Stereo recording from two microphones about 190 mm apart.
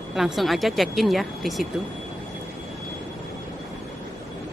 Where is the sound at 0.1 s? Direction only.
Centre (ahead or behind).